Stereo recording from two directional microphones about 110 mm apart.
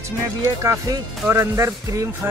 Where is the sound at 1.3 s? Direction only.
25° right (ahead or behind).